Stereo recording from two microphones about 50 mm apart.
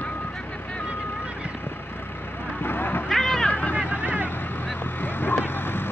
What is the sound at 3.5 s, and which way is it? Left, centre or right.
Vehicle, left.